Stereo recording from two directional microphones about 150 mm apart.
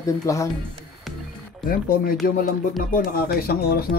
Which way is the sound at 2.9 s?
90° left.